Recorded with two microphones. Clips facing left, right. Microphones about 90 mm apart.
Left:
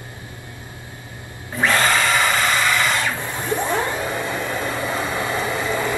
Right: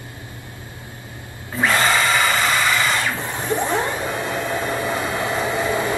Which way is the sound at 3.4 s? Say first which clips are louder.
Right 1 dB; 20° right (ahead or behind).